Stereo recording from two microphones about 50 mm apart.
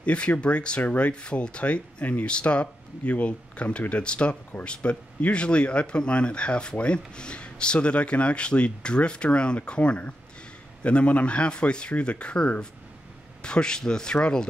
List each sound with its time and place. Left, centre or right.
0.0 s speech: left